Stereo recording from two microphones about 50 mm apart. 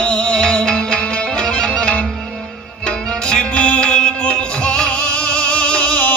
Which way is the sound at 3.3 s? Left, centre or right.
Centre.